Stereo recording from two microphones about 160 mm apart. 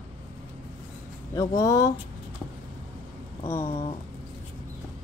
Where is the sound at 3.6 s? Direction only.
40° left (ahead or behind).